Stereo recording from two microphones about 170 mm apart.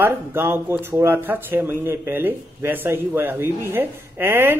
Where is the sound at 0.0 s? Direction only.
15° right (ahead or behind).